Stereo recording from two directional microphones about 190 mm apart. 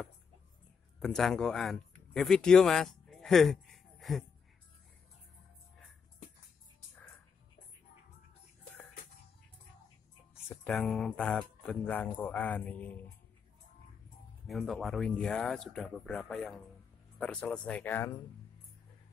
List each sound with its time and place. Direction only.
0.9 s speech: centre (ahead or behind)
10.5 s speech: 5° left (ahead or behind)
14.5 s speech: centre (ahead or behind)